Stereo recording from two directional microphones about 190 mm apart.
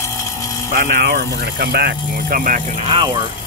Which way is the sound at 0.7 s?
50° right (ahead or behind).